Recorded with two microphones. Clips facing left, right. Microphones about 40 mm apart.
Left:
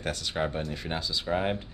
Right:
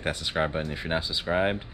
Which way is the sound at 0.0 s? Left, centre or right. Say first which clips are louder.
Right 3 dB; right.